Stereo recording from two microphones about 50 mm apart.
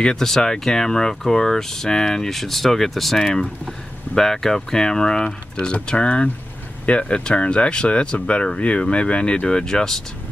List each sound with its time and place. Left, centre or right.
0.0 s speech: centre